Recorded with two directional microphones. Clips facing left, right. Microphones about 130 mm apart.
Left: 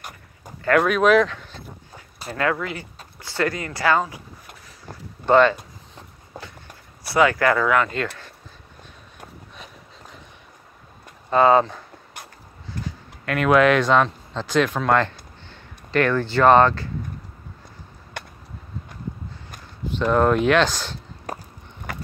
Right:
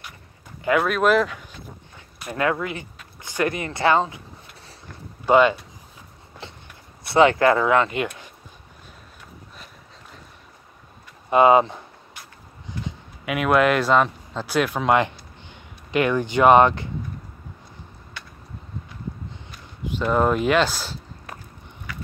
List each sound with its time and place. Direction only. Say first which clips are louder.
0.7 s speech: left 2 dB; centre (ahead or behind)
2.3 s speech: even; 20° right (ahead or behind)
5.2 s speech: left 1 dB; 10° right (ahead or behind)
7.1 s speech: right 2 dB; 25° right (ahead or behind)
11.2 s speech: right 1 dB; 15° right (ahead or behind)
20.0 s speech: left 2 dB; 5° right (ahead or behind)
21.3 s a sound: left 7 dB; 40° left (ahead or behind)
21.9 s run: left 3 dB; 45° left (ahead or behind)